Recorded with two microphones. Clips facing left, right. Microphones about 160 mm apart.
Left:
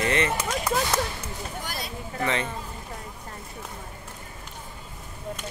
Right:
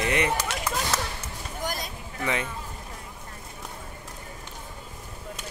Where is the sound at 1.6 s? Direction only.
45° right (ahead or behind).